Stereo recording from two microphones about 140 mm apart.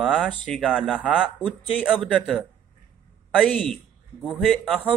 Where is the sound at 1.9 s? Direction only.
5° left (ahead or behind).